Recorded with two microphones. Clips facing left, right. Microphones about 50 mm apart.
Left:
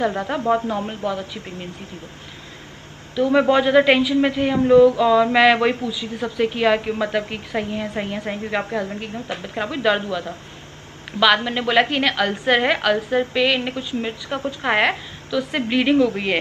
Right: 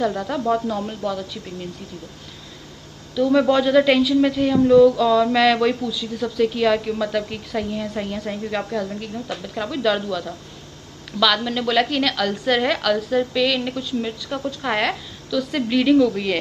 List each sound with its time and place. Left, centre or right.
0.0 s a man's voice: left
3.2 s a man's voice: left